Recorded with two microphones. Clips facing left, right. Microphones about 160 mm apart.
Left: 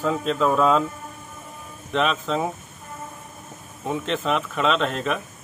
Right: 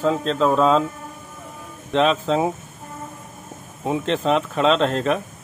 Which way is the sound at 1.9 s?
35° right (ahead or behind).